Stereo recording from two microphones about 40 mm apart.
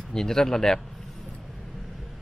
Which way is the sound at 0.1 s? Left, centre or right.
Centre.